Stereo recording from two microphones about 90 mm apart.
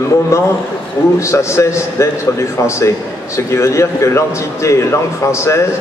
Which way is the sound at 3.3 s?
35° left (ahead or behind).